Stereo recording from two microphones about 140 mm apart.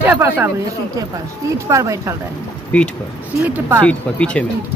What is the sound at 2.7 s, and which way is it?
Speech, 10° left (ahead or behind).